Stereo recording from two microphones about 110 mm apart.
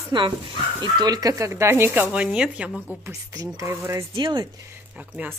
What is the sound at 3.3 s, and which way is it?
Speech, 25° right (ahead or behind).